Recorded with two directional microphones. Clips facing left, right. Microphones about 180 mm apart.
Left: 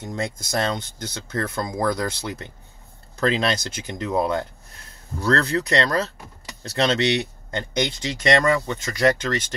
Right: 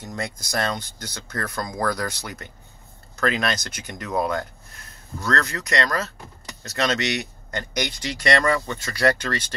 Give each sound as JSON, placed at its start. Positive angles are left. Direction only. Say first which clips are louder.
{"t": 0.0, "sound": "speech", "louder": "left 3 dB", "side_deg": 25}